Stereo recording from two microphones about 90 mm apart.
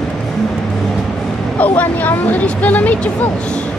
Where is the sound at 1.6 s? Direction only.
20° left (ahead or behind).